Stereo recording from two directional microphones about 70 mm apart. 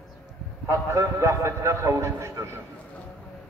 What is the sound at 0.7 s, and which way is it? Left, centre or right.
A man's voice, right.